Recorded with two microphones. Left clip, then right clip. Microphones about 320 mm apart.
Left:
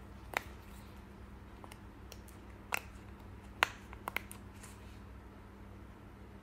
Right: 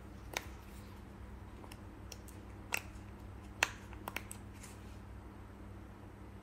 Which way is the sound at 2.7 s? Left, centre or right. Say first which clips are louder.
Left 1 dB; centre.